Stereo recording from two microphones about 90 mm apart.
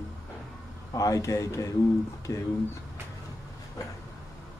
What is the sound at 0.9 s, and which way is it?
Speech, 40° left (ahead or behind).